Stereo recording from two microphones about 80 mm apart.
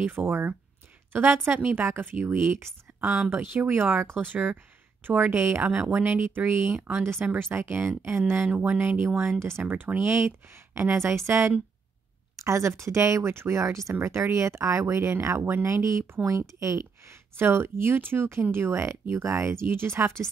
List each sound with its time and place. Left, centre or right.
0.0 s a woman's voice: right